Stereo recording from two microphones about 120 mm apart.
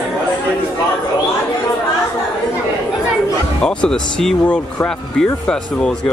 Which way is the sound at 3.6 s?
5° left (ahead or behind).